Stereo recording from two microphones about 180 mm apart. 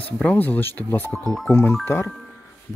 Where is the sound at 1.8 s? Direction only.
15° left (ahead or behind).